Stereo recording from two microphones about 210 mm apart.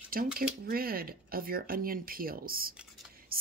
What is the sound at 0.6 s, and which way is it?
Speech, 45° right (ahead or behind).